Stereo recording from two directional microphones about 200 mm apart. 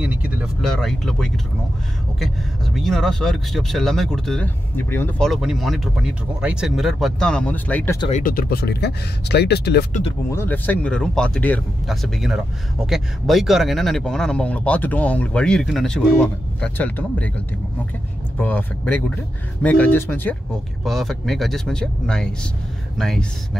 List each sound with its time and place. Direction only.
0.0 s speech: 5° right (ahead or behind)
8.2 s speech: 45° left (ahead or behind)
10.3 s speech: 10° left (ahead or behind)
18.4 s speech: 10° left (ahead or behind)